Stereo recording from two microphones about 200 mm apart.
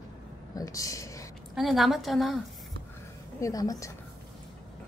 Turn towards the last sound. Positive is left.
turn(degrees=15)  # may be behind; listen again after turning